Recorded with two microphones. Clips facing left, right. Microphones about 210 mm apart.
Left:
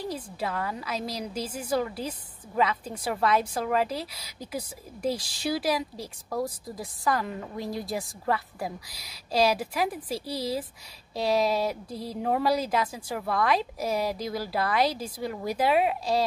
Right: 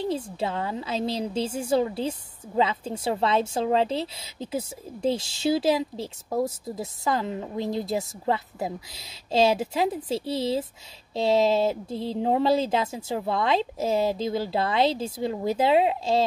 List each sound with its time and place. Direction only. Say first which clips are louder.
0.0 s a woman's voice: right 5 dB; 25° right (ahead or behind)